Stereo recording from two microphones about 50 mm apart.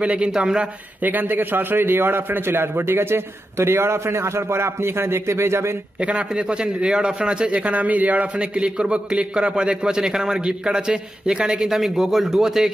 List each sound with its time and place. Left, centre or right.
0.0 s a man's voice: right
1.0 s a man's voice: right
5.9 s a man's voice: centre